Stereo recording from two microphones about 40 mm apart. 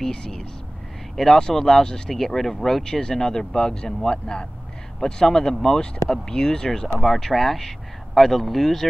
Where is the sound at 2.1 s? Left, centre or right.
Centre.